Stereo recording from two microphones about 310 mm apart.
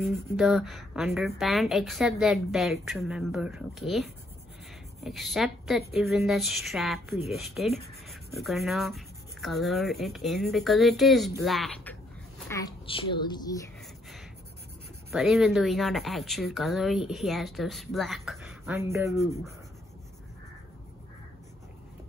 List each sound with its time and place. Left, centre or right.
0.0 s a child's voice: centre
15.0 s speech: centre